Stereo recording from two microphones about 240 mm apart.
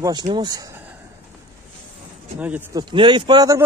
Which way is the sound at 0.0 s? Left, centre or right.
Centre.